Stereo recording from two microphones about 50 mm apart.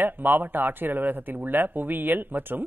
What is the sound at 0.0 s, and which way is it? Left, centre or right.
Speech, right.